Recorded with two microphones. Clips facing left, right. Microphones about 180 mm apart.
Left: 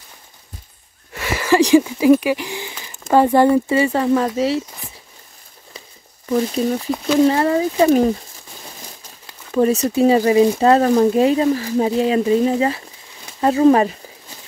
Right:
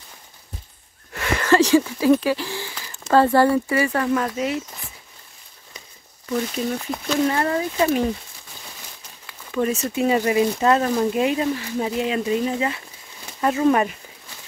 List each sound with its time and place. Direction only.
1.1 s a sound: 5° left (ahead or behind)
3.1 s speech: 15° left (ahead or behind); by 4.6 s 30° left (ahead or behind)
6.2 s speech: 30° left (ahead or behind)
9.5 s speech: 35° left (ahead or behind)